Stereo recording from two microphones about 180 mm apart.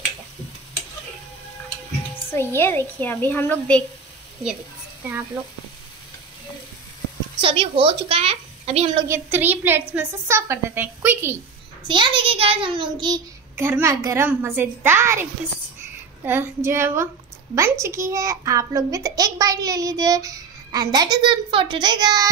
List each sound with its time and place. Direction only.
2.3 s a woman's voice: 15° left (ahead or behind)
7.3 s a child's voice: 30° right (ahead or behind)
9.0 s a child's voice: 15° right (ahead or behind)
11.9 s a child's voice: 30° right (ahead or behind)
16.3 s a child's voice: 15° right (ahead or behind)